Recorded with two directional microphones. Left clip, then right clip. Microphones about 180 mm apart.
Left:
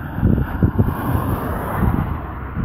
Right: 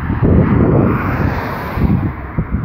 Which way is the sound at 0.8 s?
65° left (ahead or behind).